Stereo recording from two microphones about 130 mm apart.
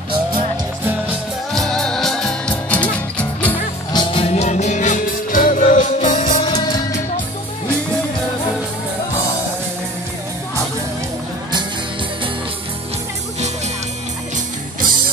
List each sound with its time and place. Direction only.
1.5 s music: 5° left (ahead or behind)
3.9 s music: 40° left (ahead or behind); by 6.4 s 70° left (ahead or behind)
6.4 s music: 35° left (ahead or behind)